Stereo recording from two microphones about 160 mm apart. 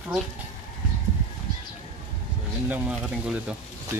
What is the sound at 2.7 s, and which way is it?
Speech, 5° right (ahead or behind).